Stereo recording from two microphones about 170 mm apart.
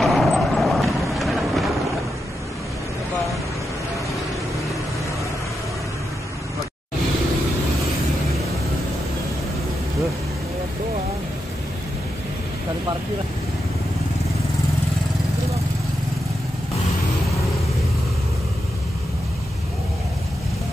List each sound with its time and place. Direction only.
0.0 s vehicle: centre (ahead or behind)